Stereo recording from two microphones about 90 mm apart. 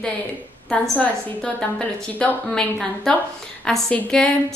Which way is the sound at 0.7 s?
10° left (ahead or behind).